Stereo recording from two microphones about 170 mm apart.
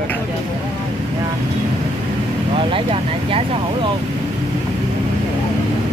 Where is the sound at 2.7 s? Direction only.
35° right (ahead or behind).